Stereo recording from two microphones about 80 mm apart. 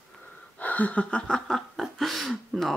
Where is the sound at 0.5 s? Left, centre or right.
Centre.